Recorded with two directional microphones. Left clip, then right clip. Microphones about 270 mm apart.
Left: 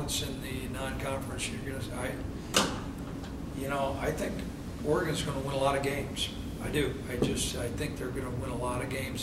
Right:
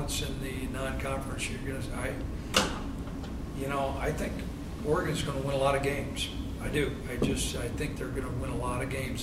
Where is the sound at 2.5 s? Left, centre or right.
Centre.